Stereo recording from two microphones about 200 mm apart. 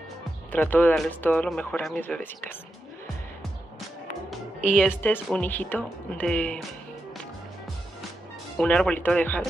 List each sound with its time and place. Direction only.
0.5 s speech: 10° left (ahead or behind)
4.6 s speech: 5° right (ahead or behind)
5.0 s speech: 10° left (ahead or behind)
8.5 s speech: 5° left (ahead or behind)